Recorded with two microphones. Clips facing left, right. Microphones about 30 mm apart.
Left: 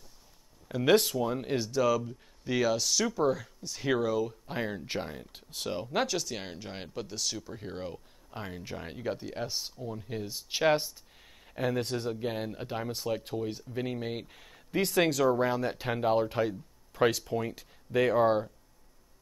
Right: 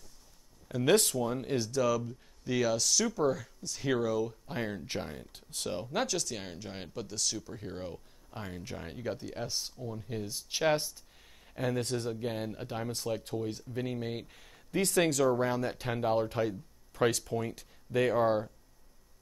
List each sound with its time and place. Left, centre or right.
0.7 s speech: centre